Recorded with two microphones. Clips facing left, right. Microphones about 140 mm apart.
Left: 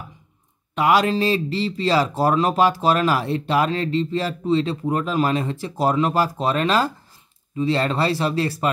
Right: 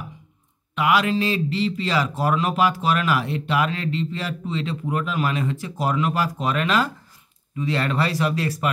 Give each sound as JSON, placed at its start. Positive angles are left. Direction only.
{"t": 0.7, "sound": "speech", "side_deg": 35}